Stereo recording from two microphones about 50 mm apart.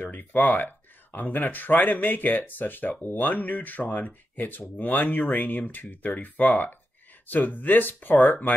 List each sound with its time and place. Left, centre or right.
0.1 s speech: left